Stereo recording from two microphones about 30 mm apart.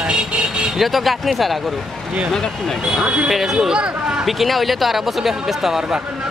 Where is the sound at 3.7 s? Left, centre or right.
Right.